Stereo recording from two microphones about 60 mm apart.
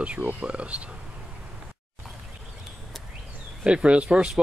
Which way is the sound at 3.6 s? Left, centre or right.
Centre.